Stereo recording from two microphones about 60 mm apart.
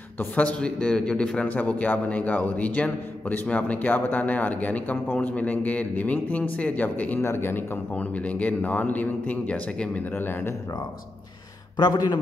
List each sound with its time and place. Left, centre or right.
0.4 s a man's voice: left
7.2 s a man's voice: left
7.9 s a man's voice: left
10.1 s a man's voice: left